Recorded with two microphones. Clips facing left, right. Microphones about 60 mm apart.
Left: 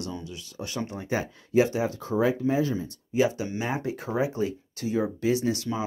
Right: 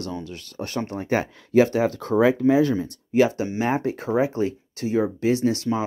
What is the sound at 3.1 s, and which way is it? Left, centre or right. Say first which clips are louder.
Speech: right 5 dB; right.